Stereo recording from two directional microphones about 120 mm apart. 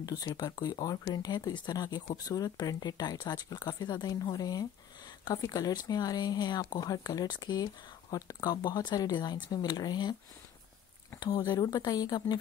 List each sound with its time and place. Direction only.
0.0 s speech: 30° left (ahead or behind)
11.1 s speech: 35° left (ahead or behind)